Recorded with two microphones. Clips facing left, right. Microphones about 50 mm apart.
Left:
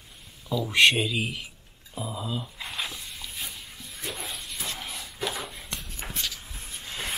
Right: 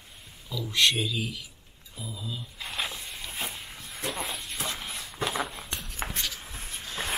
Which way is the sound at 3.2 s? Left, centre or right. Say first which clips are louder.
Right 4 dB; right.